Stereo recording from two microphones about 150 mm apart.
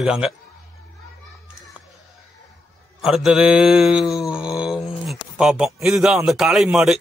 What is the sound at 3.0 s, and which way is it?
Mantra, centre (ahead or behind).